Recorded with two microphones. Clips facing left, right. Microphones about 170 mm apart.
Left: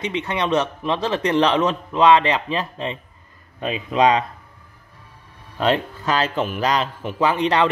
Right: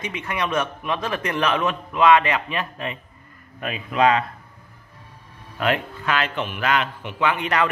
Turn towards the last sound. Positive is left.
turn(degrees=30)  # may be behind; listen again after turning